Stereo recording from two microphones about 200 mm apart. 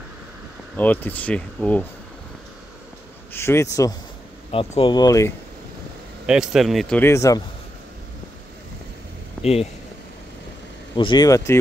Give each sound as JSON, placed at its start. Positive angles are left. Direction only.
{"t": 0.7, "sound": "speech", "side_deg": 10}
{"t": 3.3, "sound": "speech", "side_deg": 15}
{"t": 4.5, "sound": "speech", "side_deg": 25}
{"t": 6.2, "sound": "a man's voice", "side_deg": -5}
{"t": 9.4, "sound": "speech", "side_deg": 30}
{"t": 11.0, "sound": "speech", "side_deg": 20}